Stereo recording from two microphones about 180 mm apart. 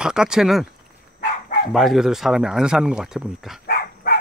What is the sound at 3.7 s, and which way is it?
Dog, 55° left (ahead or behind).